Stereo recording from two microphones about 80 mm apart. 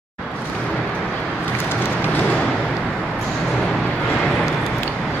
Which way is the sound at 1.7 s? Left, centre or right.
Left.